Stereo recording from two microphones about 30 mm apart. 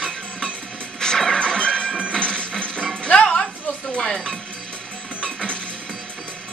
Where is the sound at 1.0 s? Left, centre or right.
Left.